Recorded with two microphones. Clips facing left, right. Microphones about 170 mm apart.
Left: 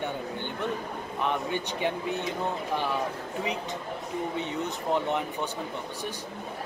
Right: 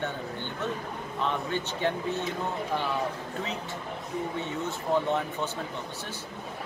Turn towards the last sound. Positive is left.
turn(degrees=15)  # may be behind; listen again after turning